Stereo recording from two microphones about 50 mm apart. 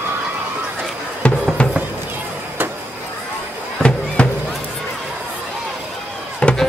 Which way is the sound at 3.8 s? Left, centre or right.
Left.